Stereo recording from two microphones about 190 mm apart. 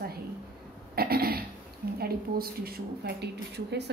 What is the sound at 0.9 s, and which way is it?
Cough, 55° right (ahead or behind).